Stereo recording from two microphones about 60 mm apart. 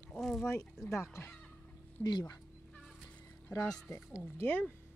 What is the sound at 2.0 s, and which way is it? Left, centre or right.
Speech, left.